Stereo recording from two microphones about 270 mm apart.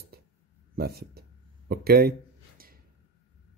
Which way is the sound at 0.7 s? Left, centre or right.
Right.